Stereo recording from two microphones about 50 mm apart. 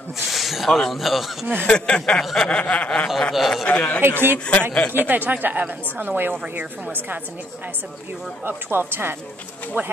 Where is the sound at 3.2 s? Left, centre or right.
Centre.